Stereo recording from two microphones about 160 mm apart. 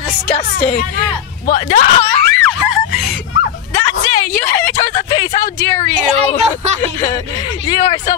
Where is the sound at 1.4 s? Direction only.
50° left (ahead or behind).